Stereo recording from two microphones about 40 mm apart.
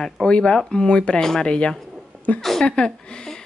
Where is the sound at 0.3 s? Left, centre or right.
Left.